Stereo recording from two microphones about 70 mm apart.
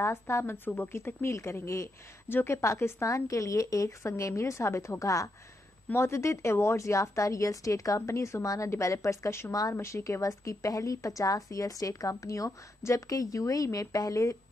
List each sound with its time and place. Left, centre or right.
0.0 s a woman's voice: left
5.9 s a woman's voice: left